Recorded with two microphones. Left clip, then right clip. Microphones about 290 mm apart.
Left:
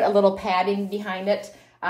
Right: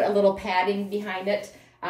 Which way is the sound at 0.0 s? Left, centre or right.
Left.